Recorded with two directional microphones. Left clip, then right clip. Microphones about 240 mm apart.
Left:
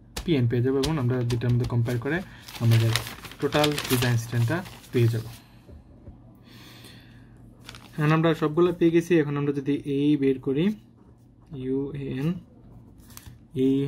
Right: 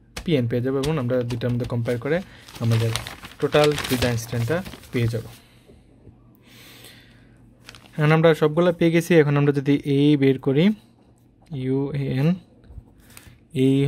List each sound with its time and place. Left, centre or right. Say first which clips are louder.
0.3 s speech: right 2 dB; right
6.5 s gasp: right 3 dB; right
7.9 s speech: right 6 dB; right
13.5 s speech: right 4 dB; right